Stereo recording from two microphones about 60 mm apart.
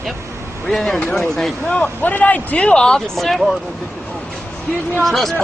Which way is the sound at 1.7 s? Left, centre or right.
Left.